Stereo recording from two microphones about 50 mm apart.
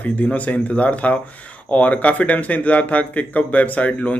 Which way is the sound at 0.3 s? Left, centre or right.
Left.